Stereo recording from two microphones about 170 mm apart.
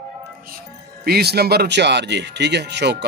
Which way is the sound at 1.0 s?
65° right (ahead or behind).